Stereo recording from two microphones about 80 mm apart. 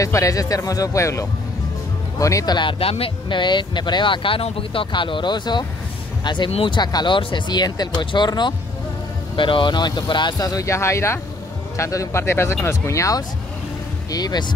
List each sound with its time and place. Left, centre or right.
0.0 s speech: left
3.3 s speech: left
9.4 s speech: left
14.1 s speech: left